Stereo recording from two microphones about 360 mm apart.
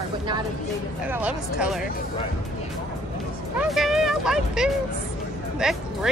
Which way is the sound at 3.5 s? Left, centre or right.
Centre.